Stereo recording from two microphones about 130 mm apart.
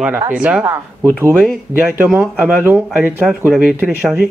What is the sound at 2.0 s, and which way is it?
Speech, 5° right (ahead or behind).